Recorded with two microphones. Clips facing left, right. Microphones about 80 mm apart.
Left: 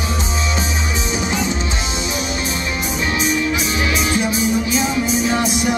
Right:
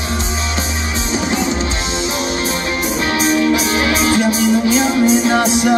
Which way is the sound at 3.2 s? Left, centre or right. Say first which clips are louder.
Right 7 dB; right.